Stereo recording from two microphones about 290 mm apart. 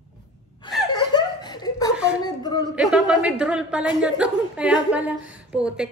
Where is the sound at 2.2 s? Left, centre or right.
Centre.